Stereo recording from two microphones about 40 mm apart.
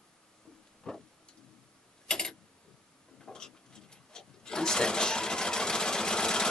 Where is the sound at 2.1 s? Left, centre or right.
Centre.